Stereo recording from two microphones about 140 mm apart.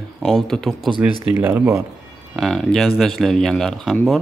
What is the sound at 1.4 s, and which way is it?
Speech, 15° right (ahead or behind).